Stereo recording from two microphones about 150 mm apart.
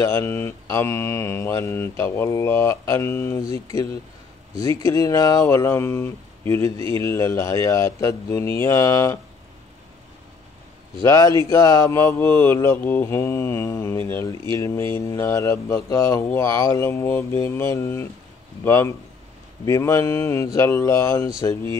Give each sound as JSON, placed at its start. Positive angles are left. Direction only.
{"t": 0.0, "sound": "mantra", "side_deg": 15}
{"t": 3.7, "sound": "speech", "side_deg": 20}
{"t": 11.0, "sound": "mantra", "side_deg": 20}
{"t": 14.6, "sound": "speech", "side_deg": 20}
{"t": 18.6, "sound": "mantra", "side_deg": 15}
{"t": 19.6, "sound": "speech", "side_deg": 20}